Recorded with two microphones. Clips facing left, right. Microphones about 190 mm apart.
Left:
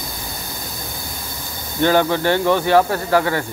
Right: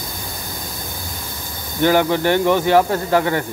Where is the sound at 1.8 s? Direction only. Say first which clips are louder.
Right 1 dB; 15° right (ahead or behind).